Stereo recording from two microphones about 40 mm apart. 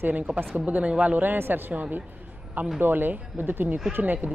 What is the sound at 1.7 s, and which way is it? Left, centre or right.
Speech, right.